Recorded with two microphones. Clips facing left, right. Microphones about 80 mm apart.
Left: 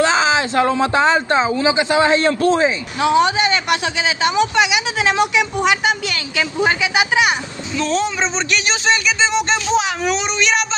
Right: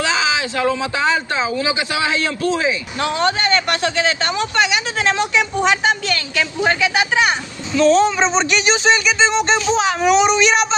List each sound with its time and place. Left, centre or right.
0.0 s speech: left
3.0 s a man's voice: centre